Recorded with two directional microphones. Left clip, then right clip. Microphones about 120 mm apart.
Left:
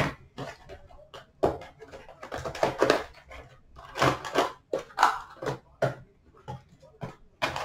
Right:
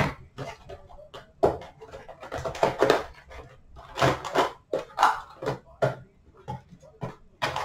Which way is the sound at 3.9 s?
10° left (ahead or behind).